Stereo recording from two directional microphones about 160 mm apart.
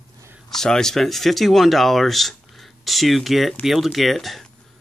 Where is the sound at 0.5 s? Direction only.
5° left (ahead or behind).